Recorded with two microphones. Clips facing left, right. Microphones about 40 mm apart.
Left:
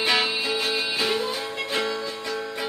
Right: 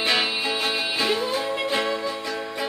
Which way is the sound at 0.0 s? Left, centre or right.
Centre.